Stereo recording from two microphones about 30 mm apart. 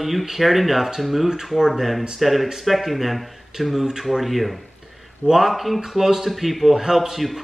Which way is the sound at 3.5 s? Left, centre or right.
Right.